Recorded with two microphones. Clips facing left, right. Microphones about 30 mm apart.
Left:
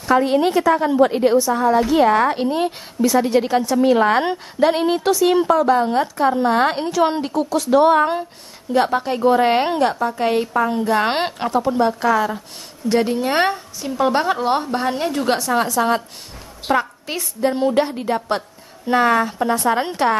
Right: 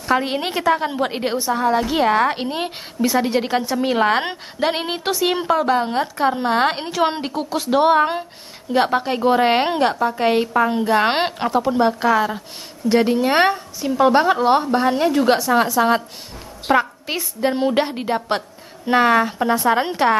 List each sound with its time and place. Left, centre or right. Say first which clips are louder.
0.0 s a woman's voice: left 4 dB; centre
1.5 s a woman's voice: left 2 dB; centre
7.9 s a woman's voice: even; centre